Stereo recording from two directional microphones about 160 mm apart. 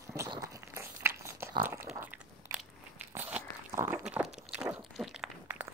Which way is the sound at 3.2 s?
10° right (ahead or behind).